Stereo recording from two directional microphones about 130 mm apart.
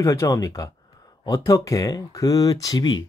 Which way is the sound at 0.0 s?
25° left (ahead or behind).